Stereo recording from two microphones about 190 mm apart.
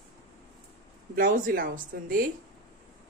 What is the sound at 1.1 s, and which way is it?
Speech, 45° right (ahead or behind).